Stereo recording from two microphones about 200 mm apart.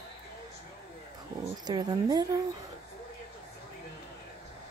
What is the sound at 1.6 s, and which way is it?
Speech, 20° right (ahead or behind).